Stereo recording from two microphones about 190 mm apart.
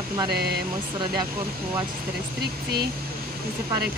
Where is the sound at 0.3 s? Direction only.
60° right (ahead or behind).